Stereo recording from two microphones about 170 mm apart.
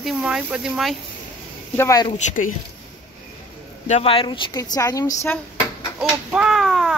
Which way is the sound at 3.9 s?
35° left (ahead or behind).